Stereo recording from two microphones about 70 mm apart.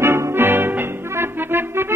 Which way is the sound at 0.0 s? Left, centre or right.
Right.